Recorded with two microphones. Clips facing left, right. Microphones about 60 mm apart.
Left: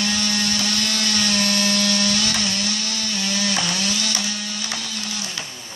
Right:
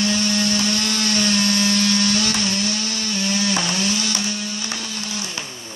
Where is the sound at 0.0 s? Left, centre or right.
Right.